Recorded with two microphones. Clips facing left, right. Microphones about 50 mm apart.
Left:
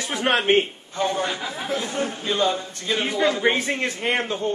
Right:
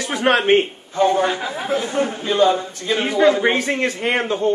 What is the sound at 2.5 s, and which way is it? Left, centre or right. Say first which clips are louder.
A man's voice: right 5 dB; centre.